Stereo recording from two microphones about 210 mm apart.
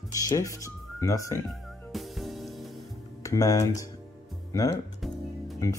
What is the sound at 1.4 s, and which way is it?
Music, centre (ahead or behind).